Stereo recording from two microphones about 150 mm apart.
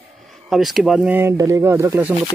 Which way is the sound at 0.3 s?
Centre (ahead or behind).